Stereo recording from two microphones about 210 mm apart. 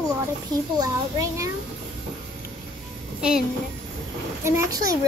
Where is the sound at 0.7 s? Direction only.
15° right (ahead or behind).